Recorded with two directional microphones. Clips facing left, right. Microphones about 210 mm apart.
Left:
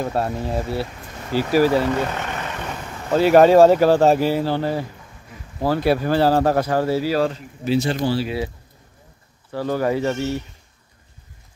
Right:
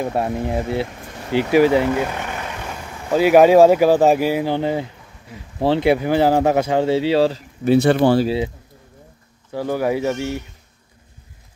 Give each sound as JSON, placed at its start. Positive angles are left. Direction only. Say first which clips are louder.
{"t": 0.0, "sound": "speech", "louder": "right 2 dB", "side_deg": -15}
{"t": 7.6, "sound": "speech", "louder": "right 6 dB", "side_deg": -55}
{"t": 9.5, "sound": "speech", "louder": "right 1 dB", "side_deg": -15}